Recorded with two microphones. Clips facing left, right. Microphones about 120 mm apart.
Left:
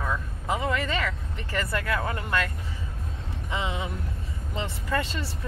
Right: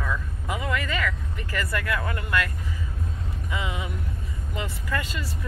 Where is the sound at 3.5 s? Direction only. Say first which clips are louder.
Left 1 dB; 30° left (ahead or behind).